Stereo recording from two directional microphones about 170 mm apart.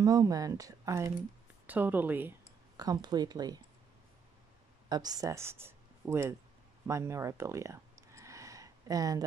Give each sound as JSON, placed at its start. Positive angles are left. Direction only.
{"t": 0.0, "sound": "speech", "side_deg": -20}
{"t": 2.8, "sound": "speech", "side_deg": -25}
{"t": 4.8, "sound": "speech", "side_deg": -25}
{"t": 6.9, "sound": "a sound", "side_deg": -15}